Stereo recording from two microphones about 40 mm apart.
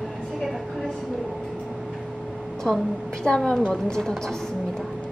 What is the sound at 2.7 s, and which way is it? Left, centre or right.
Speech, centre.